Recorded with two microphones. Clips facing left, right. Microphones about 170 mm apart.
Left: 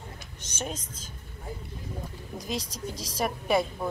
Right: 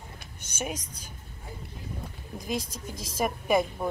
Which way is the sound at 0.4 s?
10° right (ahead or behind).